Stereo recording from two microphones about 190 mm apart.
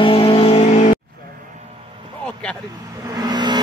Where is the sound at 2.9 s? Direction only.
20° right (ahead or behind).